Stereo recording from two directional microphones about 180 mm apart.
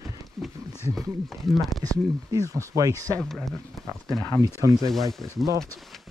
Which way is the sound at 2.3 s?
20° right (ahead or behind).